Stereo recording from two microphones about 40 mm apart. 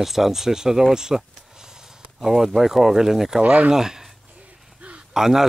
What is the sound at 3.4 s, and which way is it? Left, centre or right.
Speech, right.